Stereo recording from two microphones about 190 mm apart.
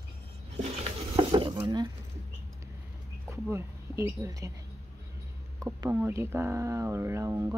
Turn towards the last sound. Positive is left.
turn(degrees=-15)  # may be behind; listen again after turning